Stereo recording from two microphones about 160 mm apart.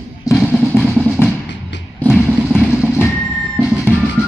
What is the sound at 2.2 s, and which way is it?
Vehicle, 5° right (ahead or behind).